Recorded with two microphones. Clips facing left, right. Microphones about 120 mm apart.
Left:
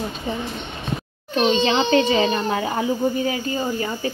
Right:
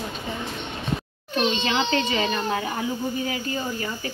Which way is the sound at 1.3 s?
30° left (ahead or behind).